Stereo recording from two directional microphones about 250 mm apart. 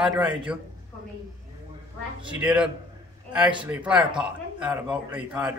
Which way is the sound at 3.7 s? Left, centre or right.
Centre.